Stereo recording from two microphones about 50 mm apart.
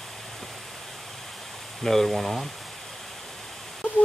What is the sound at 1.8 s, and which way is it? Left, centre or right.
Speech, centre.